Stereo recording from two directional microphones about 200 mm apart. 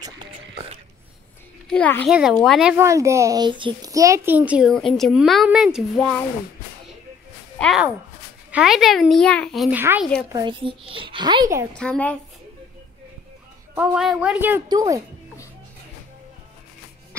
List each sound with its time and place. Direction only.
0.0 s music: 25° right (ahead or behind)
1.7 s a child's voice: 10° left (ahead or behind)
7.5 s speech: 5° left (ahead or behind)
10.3 s a child's voice: 25° right (ahead or behind)
11.7 s speech: 5° left (ahead or behind)
13.7 s a woman's voice: centre (ahead or behind)